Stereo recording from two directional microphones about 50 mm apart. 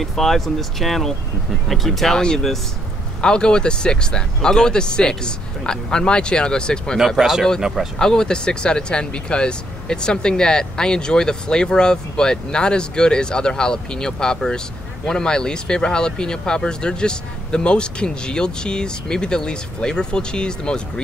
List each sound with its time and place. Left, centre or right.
0.0 s speech: centre
3.2 s speech: centre
7.2 s speech: centre
8.0 s speech: centre